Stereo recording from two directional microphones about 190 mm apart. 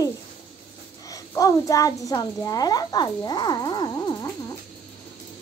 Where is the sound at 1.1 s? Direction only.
20° left (ahead or behind).